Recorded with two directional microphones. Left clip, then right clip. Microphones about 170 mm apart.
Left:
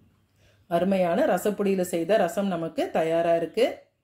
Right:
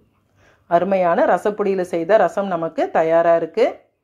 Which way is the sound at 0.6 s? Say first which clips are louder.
Right 8 dB; 15° left (ahead or behind).